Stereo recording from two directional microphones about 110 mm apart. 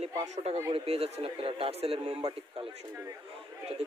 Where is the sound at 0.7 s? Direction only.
65° right (ahead or behind).